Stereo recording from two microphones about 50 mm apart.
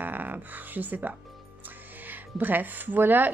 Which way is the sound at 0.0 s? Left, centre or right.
Right.